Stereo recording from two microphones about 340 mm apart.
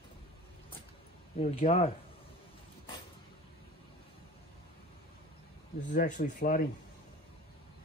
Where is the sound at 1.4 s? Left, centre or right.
Centre.